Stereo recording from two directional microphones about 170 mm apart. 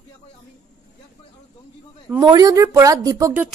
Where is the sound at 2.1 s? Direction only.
20° right (ahead or behind).